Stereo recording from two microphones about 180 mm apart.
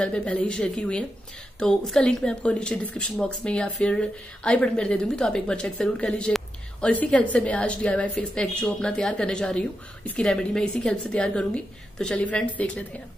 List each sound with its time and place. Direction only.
0.0 s speech: 5° left (ahead or behind)